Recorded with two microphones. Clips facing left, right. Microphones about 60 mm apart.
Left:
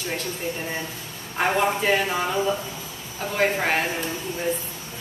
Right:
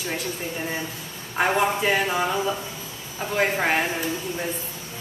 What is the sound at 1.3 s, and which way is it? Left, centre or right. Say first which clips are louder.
A woman's voice: even; centre.